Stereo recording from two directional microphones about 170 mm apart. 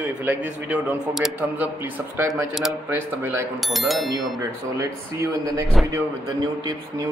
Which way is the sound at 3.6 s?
Centre (ahead or behind).